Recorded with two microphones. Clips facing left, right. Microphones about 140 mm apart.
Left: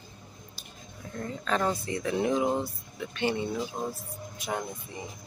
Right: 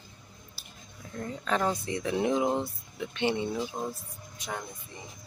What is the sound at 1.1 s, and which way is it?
Speech, 10° right (ahead or behind).